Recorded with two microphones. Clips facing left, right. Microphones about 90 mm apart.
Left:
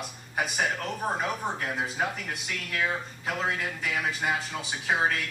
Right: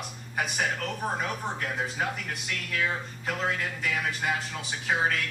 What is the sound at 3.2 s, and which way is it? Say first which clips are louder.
Speech: even; 5° left (ahead or behind).